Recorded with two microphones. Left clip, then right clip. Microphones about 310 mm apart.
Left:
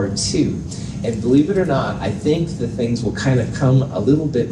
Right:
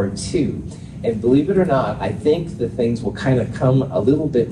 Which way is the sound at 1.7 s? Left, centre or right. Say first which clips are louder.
Right 2 dB; right.